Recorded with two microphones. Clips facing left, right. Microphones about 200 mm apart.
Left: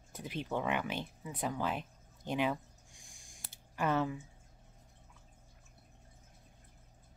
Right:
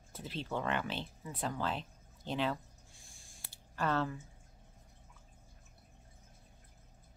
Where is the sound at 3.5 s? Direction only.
15° left (ahead or behind).